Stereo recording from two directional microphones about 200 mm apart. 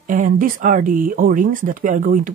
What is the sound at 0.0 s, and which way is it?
Speech, 40° right (ahead or behind).